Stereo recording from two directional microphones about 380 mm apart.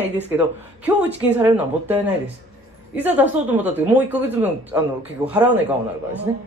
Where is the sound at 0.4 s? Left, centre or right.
Centre.